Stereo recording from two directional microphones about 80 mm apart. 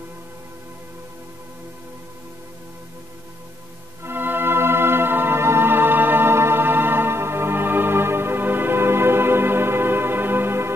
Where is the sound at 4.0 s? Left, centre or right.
Right.